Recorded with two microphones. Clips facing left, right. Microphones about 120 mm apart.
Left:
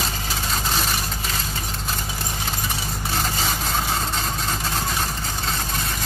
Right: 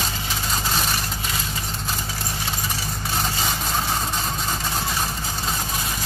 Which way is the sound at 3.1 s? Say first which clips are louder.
Even; centre (ahead or behind).